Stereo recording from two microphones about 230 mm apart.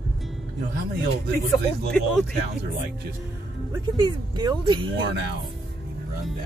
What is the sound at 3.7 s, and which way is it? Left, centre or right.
Speech, centre.